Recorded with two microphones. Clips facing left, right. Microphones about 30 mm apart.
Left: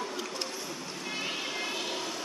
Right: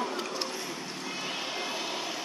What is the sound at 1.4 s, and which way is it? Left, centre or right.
Vehicle, centre.